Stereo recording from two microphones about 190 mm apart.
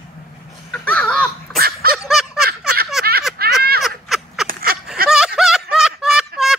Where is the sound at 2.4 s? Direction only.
55° right (ahead or behind).